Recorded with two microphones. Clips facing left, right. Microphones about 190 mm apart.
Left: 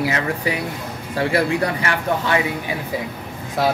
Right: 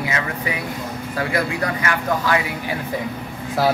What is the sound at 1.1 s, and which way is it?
Speech, 30° left (ahead or behind).